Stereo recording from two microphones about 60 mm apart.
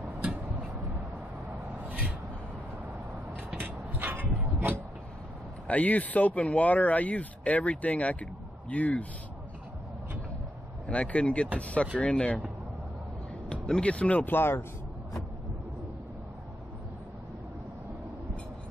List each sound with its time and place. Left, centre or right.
0.0 s tick-tock: right
1.9 s vehicle: right
3.5 s a sound: right
5.7 s speech: left
10.9 s speech: left
13.5 s speech: centre
14.2 s speech: left